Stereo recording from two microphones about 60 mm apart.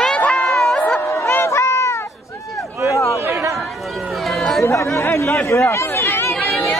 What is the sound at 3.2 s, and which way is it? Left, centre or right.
Chatter, right.